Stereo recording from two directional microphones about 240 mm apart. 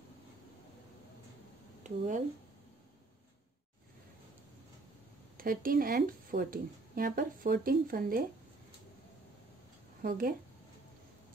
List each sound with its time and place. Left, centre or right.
1.8 s speech: right
5.4 s speech: right
10.0 s speech: right